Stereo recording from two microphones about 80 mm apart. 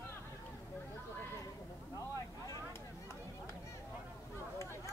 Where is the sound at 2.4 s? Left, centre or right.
Left.